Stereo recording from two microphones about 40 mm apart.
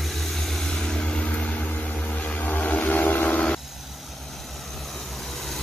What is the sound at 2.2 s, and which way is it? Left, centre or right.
Vehicle, left.